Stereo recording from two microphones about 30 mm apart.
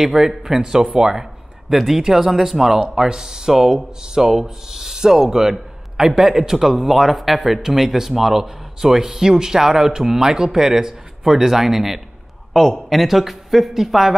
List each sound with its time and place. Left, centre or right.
0.0 s speech: centre
0.6 s a man's voice: right